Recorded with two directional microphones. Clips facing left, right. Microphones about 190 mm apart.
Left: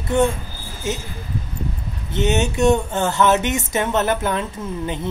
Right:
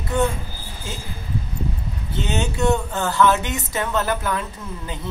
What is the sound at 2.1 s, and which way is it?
Speech, 20° left (ahead or behind).